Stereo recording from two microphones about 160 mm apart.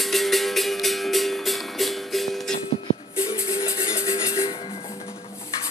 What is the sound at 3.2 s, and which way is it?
Music, 35° left (ahead or behind).